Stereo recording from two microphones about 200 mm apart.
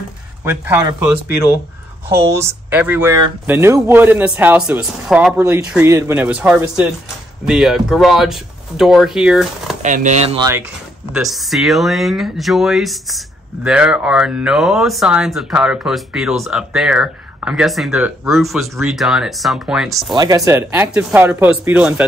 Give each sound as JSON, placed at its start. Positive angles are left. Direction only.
{"t": 0.4, "sound": "speech", "side_deg": -10}
{"t": 9.8, "sound": "speech", "side_deg": -40}
{"t": 11.1, "sound": "speech", "side_deg": 0}
{"t": 20.2, "sound": "speech", "side_deg": -20}